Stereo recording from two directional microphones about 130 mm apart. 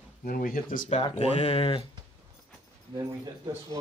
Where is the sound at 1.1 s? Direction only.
55° left (ahead or behind).